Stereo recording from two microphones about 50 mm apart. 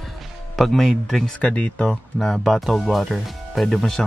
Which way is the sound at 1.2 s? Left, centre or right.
Left.